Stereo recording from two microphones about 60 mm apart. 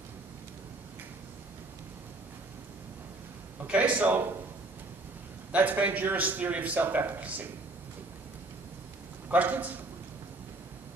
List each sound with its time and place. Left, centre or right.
3.6 s a man's voice: right
5.5 s a man's voice: right
9.3 s a man's voice: right